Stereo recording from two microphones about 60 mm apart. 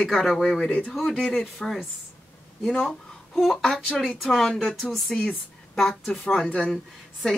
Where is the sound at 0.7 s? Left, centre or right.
Left.